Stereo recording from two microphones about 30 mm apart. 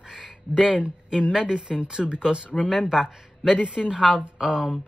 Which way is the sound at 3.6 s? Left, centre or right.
Right.